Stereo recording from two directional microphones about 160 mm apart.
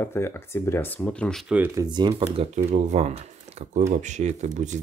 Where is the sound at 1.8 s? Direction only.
25° right (ahead or behind).